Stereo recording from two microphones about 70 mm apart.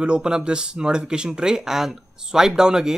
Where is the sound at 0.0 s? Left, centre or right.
Centre.